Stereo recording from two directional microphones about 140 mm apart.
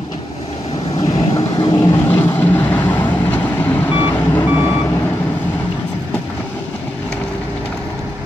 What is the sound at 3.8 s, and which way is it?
Reversing beeps, 35° left (ahead or behind).